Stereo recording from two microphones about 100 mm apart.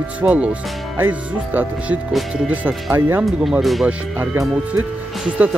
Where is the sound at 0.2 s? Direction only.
15° right (ahead or behind).